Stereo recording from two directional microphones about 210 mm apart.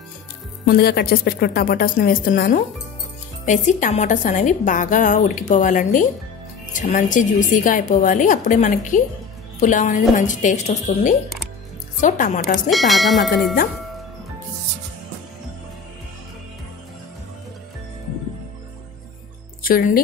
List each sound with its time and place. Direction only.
0.7 s a woman's voice: 45° left (ahead or behind)
12.6 s tubular bells: centre (ahead or behind)
19.6 s speech: 45° left (ahead or behind)